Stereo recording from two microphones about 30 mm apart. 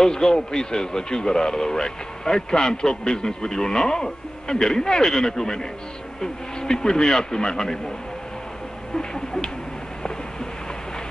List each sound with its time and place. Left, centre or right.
0.0 s speech: left
8.9 s speech: centre